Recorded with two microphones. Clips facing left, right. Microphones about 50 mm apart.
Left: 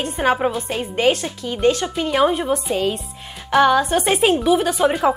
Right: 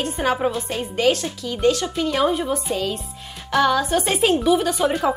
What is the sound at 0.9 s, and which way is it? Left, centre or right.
A woman's voice, left.